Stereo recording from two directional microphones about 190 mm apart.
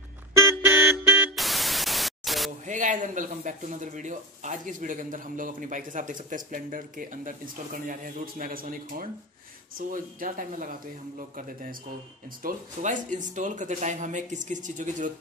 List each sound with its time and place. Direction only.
0.3 s vehicle horn: 15° right (ahead or behind)
2.6 s speech: 40° right (ahead or behind)